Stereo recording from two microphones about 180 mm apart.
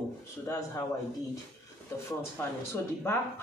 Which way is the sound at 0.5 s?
15° left (ahead or behind).